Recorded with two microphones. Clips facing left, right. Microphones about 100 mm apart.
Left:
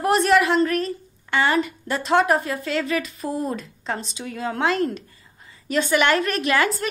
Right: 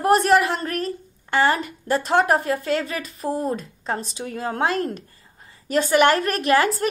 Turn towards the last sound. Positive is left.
turn(degrees=-45)  # may be behind; listen again after turning